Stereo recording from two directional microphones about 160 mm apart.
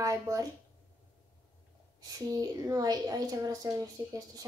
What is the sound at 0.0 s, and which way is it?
Speech, 20° right (ahead or behind).